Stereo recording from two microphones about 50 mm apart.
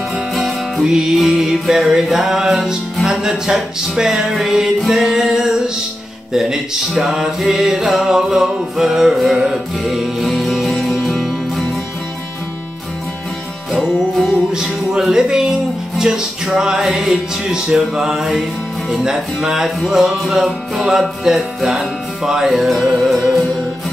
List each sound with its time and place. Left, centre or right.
0.4 s music: centre
13.7 s music: centre
15.1 s music: centre
16.8 s music: centre